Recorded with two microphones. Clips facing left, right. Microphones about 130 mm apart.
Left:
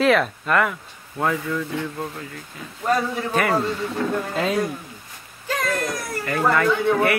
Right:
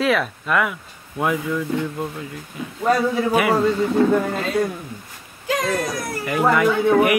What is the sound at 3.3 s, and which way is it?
Speech, 10° right (ahead or behind).